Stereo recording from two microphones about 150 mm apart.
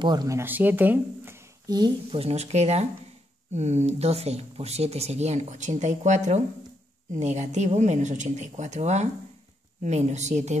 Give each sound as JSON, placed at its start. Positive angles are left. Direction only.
{"t": 0.0, "sound": "speech", "side_deg": -25}
{"t": 2.1, "sound": "speech", "side_deg": -45}